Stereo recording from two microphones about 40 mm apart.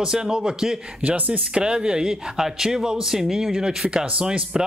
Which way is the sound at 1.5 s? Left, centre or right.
Right.